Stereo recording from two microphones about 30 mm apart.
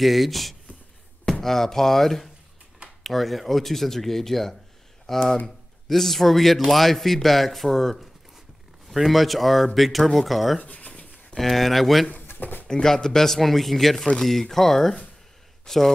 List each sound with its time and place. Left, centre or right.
0.0 s speech: centre
10.6 s speech: left
10.9 s a sound: left
11.3 s speech: centre
12.2 s drawer open or close: left
12.6 s speech: left
13.4 s speech: centre
13.9 s speech: left
14.2 s speech: centre